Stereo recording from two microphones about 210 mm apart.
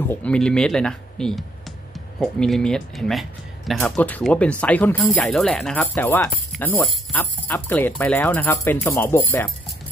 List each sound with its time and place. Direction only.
0.1 s speech: 5° left (ahead or behind)